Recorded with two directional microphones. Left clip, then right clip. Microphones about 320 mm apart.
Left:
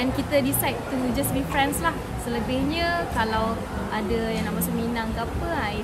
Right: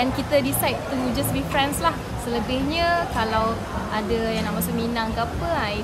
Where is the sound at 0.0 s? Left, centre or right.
Centre.